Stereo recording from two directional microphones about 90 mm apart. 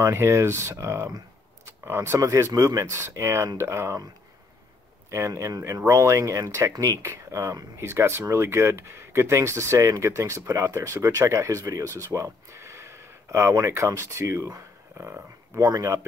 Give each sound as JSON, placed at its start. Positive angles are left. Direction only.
{"t": 0.0, "sound": "speech", "side_deg": -30}
{"t": 5.1, "sound": "speech", "side_deg": -30}